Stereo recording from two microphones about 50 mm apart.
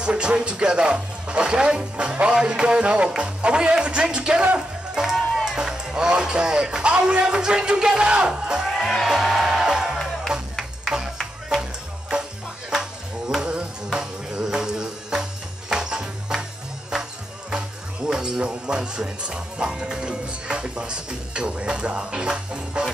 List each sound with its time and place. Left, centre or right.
0.0 s speech: centre
9.0 s music: centre
13.9 s music: centre
17.5 s music: centre
18.4 s speech: centre